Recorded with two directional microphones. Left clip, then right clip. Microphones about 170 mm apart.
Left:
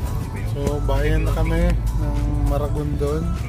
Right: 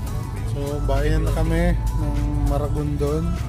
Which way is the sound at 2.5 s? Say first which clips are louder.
Left 1 dB; 20° right (ahead or behind).